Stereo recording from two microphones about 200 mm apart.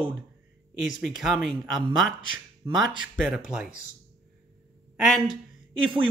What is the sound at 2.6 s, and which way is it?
Speech, 15° right (ahead or behind).